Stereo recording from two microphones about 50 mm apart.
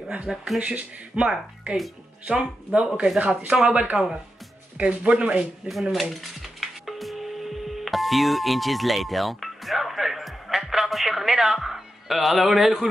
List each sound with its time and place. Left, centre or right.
0.6 s speech: right
5.4 s dishes: centre